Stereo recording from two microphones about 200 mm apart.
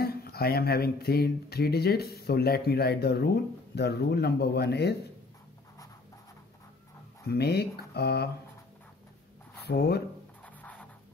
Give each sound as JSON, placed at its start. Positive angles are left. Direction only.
{"t": 0.0, "sound": "speech", "side_deg": 50}
{"t": 7.2, "sound": "speech", "side_deg": 55}
{"t": 9.6, "sound": "speech", "side_deg": 55}
{"t": 10.4, "sound": "music", "side_deg": 5}